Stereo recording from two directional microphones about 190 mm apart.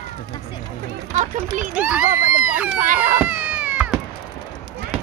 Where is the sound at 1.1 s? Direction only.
40° right (ahead or behind).